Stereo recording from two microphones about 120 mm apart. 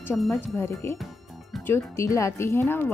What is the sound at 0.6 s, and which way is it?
A woman's voice, 25° left (ahead or behind).